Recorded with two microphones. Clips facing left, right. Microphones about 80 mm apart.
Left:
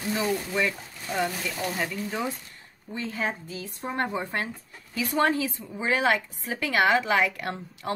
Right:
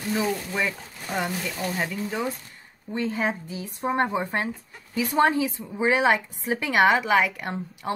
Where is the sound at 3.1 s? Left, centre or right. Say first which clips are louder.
Right 3 dB; centre.